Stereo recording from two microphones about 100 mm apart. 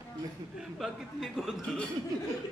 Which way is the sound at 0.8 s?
Centre (ahead or behind).